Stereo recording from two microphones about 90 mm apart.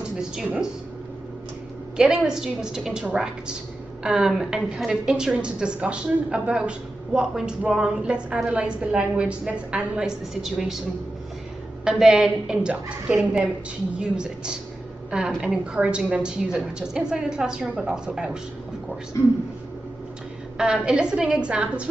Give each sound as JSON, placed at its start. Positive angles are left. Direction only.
{"t": 2.0, "sound": "a woman's voice", "side_deg": -10}
{"t": 11.8, "sound": "a woman's voice", "side_deg": -5}
{"t": 19.1, "sound": "a man's voice", "side_deg": 35}
{"t": 20.5, "sound": "a woman's voice", "side_deg": -10}